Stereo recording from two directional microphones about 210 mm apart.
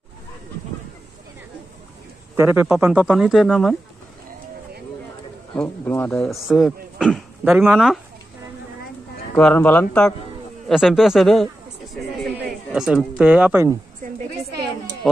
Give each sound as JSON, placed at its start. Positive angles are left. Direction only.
{"t": 2.3, "sound": "speech", "side_deg": -10}
{"t": 5.6, "sound": "speech", "side_deg": 10}
{"t": 9.4, "sound": "speech", "side_deg": 5}
{"t": 12.4, "sound": "speech", "side_deg": 0}